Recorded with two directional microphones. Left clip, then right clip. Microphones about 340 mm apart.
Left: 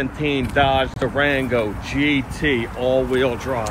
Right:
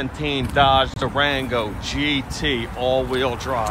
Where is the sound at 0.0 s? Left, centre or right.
Centre.